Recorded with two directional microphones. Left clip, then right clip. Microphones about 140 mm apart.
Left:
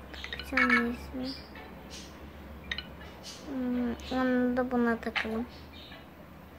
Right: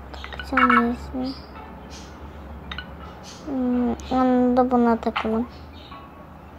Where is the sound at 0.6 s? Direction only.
45° left (ahead or behind).